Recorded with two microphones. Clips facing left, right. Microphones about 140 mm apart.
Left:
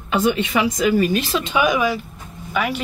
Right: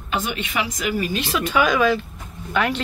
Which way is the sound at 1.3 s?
20° left (ahead or behind).